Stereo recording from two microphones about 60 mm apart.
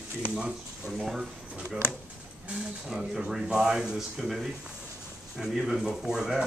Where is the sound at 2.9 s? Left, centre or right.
Centre.